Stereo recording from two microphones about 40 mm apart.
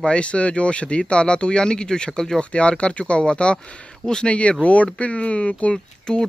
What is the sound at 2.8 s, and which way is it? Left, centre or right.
Speech, left.